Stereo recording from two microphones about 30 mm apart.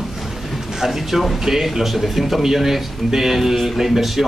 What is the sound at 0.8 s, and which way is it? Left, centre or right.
Speech, centre.